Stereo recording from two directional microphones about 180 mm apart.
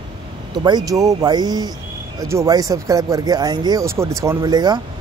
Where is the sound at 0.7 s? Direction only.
20° right (ahead or behind).